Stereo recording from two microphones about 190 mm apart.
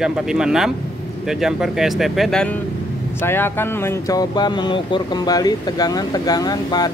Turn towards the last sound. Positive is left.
turn(degrees=20)  # may be behind; listen again after turning